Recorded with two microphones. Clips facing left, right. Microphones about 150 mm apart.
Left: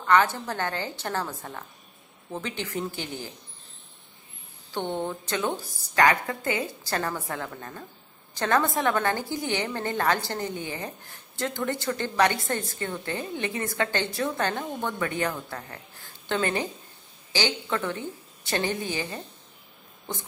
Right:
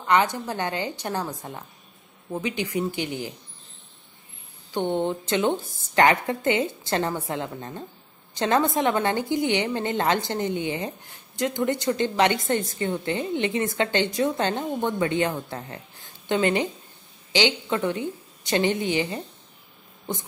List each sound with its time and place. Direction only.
0.0 s a woman's voice: 15° right (ahead or behind)
4.7 s a woman's voice: 15° right (ahead or behind)